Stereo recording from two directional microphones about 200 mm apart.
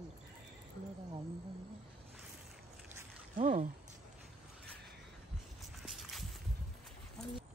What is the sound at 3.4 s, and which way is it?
Speech, 40° right (ahead or behind).